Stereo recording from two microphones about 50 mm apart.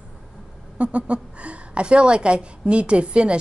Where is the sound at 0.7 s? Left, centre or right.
Right.